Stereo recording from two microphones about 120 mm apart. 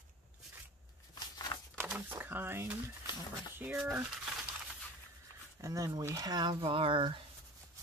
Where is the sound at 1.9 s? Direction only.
15° right (ahead or behind).